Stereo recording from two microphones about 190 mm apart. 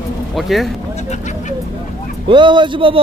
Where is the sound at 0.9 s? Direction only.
40° left (ahead or behind).